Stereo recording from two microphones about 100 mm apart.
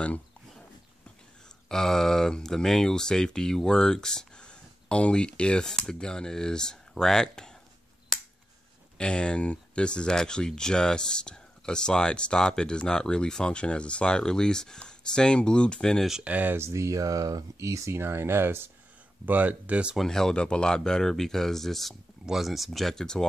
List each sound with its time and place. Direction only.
0.0 s a sound: 10° left (ahead or behind)
1.7 s speech: 5° left (ahead or behind)
8.9 s speech: 10° left (ahead or behind)
16.1 s speech: 10° right (ahead or behind)
16.5 s speech: 30° right (ahead or behind); by 20.0 s 10° right (ahead or behind)
20.0 s speech: 5° left (ahead or behind)